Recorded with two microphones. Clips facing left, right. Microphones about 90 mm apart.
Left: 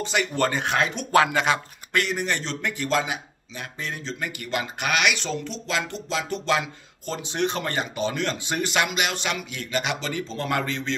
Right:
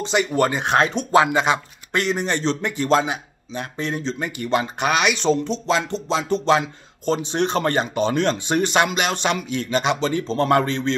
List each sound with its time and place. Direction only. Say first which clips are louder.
0.0 s speech: right 4 dB; 25° right (ahead or behind)
0.7 s speech: right 4 dB; 30° right (ahead or behind)